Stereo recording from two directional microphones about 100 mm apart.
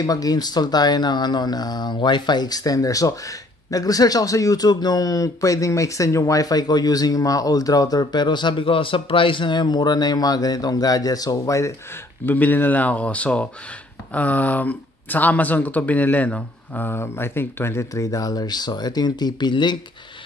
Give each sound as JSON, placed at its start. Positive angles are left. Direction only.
{"t": 0.0, "sound": "speech", "side_deg": 40}